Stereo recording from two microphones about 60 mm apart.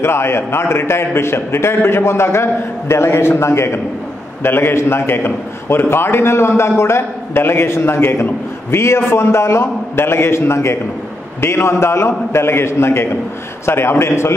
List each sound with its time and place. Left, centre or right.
0.0 s a man's voice: left